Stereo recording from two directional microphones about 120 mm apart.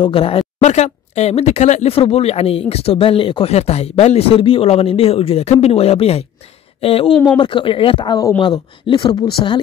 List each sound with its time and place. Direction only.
0.0 s speech: 50° left (ahead or behind)
0.7 s speech: 70° left (ahead or behind); by 9.6 s 40° left (ahead or behind)